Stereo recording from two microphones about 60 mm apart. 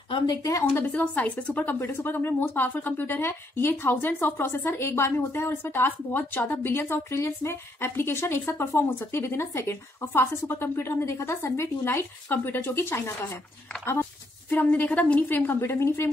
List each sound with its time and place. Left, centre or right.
0.4 s a woman's voice: left
0.8 s a woman's voice: left
1.8 s speech: left
11.8 s speech: left
14.5 s a woman's voice: left
15.6 s speech: left